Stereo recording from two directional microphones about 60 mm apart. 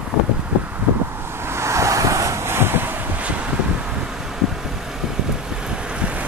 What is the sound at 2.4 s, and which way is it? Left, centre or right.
Vehicle, right.